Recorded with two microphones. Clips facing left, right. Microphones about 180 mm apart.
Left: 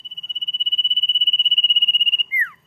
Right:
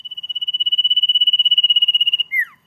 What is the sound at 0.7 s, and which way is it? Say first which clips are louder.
Cricket: right 3 dB; 25° right (ahead or behind).